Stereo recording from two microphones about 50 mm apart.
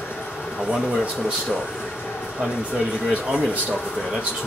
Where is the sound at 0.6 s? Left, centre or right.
Right.